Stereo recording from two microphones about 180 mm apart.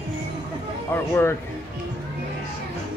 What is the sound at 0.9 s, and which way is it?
Speech, 15° left (ahead or behind).